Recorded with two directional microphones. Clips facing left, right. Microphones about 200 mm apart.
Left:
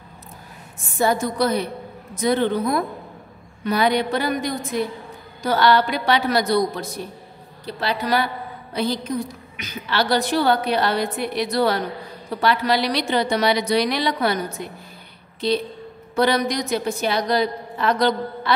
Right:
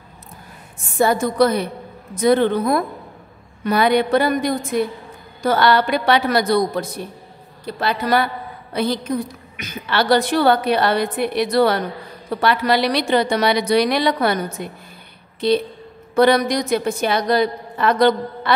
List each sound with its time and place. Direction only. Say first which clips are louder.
0.9 s a woman's voice: right 4 dB; 55° right (ahead or behind)
16.2 s a woman's voice: right 5 dB; 55° right (ahead or behind)